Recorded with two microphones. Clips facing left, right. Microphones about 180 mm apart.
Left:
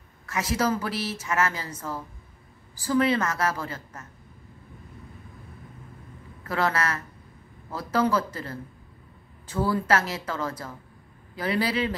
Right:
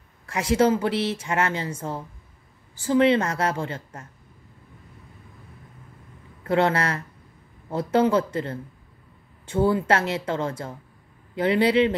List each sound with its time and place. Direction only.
0.3 s speech: 30° right (ahead or behind)
6.4 s speech: 25° right (ahead or behind)